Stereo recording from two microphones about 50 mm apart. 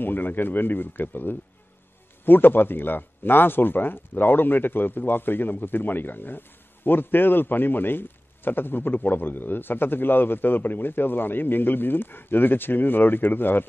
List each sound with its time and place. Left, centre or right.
0.0 s a man's voice: left